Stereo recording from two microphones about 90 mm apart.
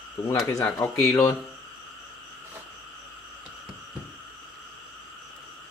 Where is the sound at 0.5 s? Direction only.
35° left (ahead or behind).